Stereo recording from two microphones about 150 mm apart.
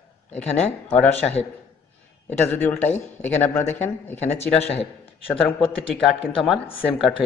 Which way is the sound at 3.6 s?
50° left (ahead or behind).